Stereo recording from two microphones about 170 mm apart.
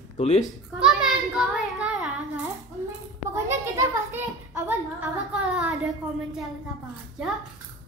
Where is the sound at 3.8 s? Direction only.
15° right (ahead or behind).